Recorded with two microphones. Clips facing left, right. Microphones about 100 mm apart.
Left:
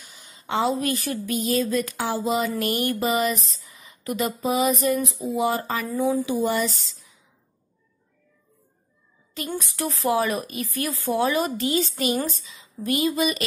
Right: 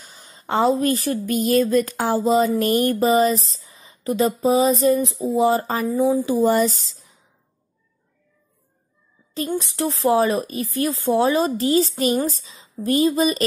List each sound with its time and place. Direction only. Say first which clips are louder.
0.0 s a woman's voice: right 4 dB; 35° right (ahead or behind)
1.3 s speech: right 6 dB; 50° right (ahead or behind); by 5.9 s 35° right (ahead or behind)
5.9 s speech: right 4 dB; 15° right (ahead or behind)
6.2 s speech: right 6 dB; 35° right (ahead or behind)
9.5 s a woman's voice: right 4 dB; 25° right (ahead or behind)